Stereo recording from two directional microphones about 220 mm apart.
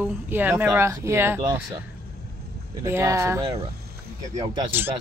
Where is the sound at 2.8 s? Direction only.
10° right (ahead or behind).